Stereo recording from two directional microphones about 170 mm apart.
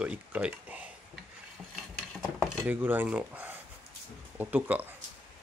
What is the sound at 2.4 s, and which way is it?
Speech, 10° right (ahead or behind).